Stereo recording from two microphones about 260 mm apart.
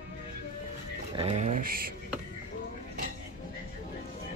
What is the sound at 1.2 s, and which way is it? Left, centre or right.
Speech, right.